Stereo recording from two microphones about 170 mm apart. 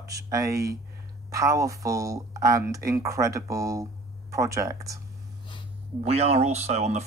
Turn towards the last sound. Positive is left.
turn(degrees=-40)  # may be behind; listen again after turning